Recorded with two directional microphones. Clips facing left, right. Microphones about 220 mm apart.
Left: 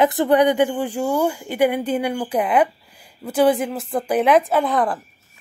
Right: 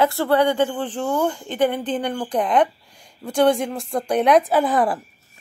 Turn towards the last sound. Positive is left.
turn(degrees=-5)  # may be behind; listen again after turning